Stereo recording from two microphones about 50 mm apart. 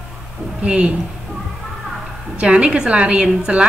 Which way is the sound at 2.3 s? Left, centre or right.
Right.